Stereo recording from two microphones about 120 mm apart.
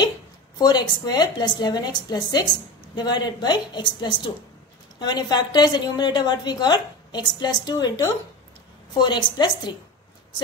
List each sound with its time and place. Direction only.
0.6 s a woman's voice: 35° left (ahead or behind)
8.9 s a woman's voice: 40° left (ahead or behind)